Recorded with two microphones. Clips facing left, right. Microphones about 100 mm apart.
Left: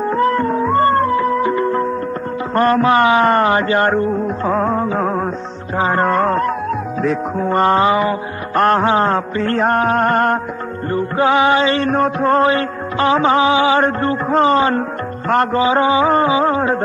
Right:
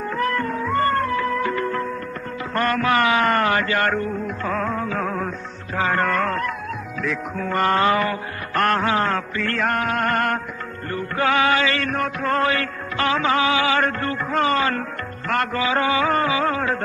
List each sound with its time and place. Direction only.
0.2 s music: 30° left (ahead or behind)
5.0 s music: 55° left (ahead or behind)
6.0 s music: 35° left (ahead or behind)
7.5 s music: 25° left (ahead or behind)
11.7 s mantra: 45° left (ahead or behind)
12.3 s music: 30° left (ahead or behind)